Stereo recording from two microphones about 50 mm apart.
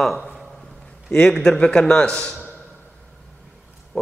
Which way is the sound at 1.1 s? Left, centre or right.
Centre.